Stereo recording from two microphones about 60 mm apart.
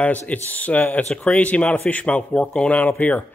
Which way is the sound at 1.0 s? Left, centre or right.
Centre.